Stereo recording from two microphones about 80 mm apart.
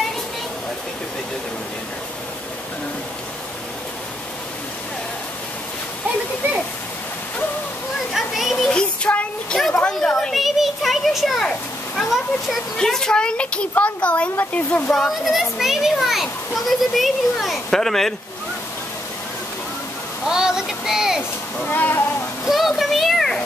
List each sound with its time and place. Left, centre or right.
8.1 s children playing: centre
8.6 s a sound: centre
10.3 s children playing: centre
12.7 s a child's voice: centre
20.2 s speech: centre
21.6 s speech: left
22.5 s a sound: centre